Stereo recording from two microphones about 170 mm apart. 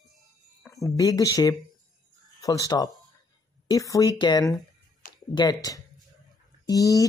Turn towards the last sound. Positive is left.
turn(degrees=20)  # may be behind; listen again after turning